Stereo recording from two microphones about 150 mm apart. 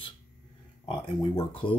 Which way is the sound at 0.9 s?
35° left (ahead or behind).